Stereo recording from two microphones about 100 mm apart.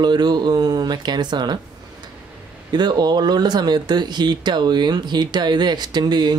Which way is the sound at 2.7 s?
45° right (ahead or behind).